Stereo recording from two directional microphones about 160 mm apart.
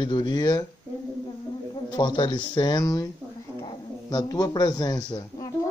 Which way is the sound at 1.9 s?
30° left (ahead or behind).